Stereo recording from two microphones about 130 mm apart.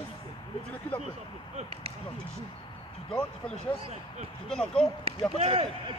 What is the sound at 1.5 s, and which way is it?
Speech, 50° right (ahead or behind).